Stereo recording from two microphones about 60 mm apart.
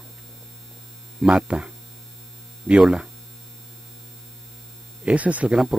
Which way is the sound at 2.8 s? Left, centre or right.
Centre.